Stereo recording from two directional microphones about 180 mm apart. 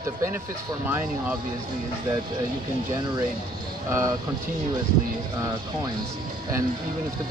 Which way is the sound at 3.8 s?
15° right (ahead or behind).